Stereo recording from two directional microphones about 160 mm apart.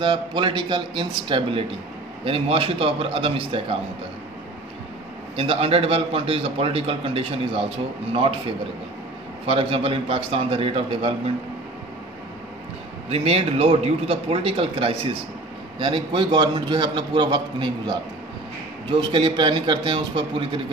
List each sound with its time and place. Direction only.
0.0 s a man's voice: 30° right (ahead or behind)
5.3 s a man's voice: 35° right (ahead or behind)
13.1 s a man's voice: 40° right (ahead or behind)
18.9 s a man's voice: 30° right (ahead or behind)